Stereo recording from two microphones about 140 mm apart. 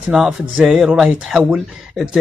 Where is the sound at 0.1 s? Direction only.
5° right (ahead or behind).